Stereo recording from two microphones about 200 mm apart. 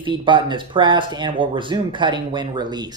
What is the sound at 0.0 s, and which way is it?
A man's voice, 25° right (ahead or behind).